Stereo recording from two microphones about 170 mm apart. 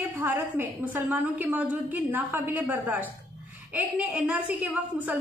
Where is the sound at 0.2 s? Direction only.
15° right (ahead or behind).